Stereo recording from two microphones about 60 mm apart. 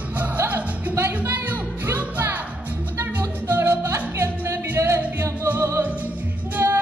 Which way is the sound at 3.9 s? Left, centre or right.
Right.